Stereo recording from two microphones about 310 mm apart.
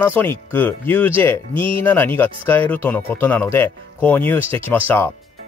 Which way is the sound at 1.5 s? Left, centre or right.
Centre.